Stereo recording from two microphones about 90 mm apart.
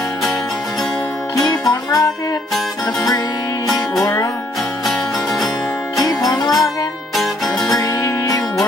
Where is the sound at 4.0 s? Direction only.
40° left (ahead or behind).